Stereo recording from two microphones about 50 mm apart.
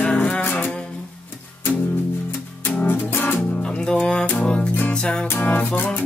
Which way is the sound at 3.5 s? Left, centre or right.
Left.